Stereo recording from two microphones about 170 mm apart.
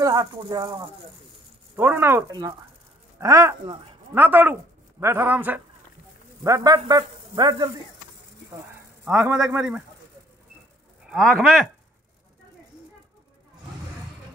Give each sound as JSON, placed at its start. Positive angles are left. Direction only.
{"t": 0.0, "sound": "speech", "side_deg": -20}
{"t": 1.8, "sound": "a man's voice", "side_deg": -15}
{"t": 6.4, "sound": "a man's voice", "side_deg": -20}
{"t": 8.5, "sound": "speech", "side_deg": -10}
{"t": 11.1, "sound": "speech", "side_deg": 0}